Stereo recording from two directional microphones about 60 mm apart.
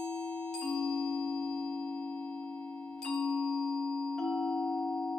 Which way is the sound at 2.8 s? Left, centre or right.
Centre.